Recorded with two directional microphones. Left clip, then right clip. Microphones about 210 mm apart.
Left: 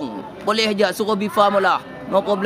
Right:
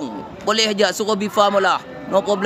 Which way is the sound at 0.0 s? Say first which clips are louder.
Even; 5° right (ahead or behind).